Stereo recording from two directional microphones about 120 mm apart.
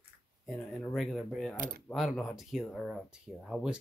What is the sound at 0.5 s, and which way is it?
Speech, centre (ahead or behind).